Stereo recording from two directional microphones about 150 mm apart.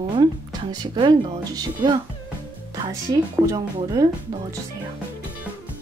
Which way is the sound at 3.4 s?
25° right (ahead or behind).